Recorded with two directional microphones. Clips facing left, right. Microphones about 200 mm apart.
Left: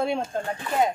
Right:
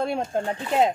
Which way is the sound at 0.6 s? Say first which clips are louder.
Right 2 dB; 25° right (ahead or behind).